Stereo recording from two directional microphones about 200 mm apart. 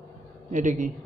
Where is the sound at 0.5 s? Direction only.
40° right (ahead or behind).